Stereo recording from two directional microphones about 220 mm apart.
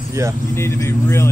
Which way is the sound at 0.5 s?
10° left (ahead or behind).